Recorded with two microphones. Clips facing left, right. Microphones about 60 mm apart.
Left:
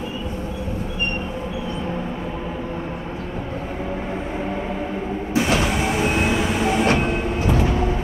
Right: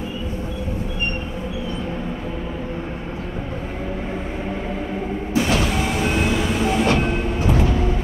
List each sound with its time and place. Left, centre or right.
5.3 s vehicle: left